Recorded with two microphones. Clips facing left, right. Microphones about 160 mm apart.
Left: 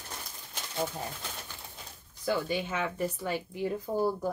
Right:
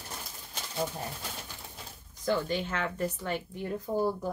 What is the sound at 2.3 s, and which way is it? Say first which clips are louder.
Speech: right 1 dB; 10° left (ahead or behind).